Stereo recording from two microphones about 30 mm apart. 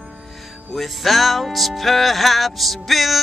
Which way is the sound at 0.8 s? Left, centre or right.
Centre.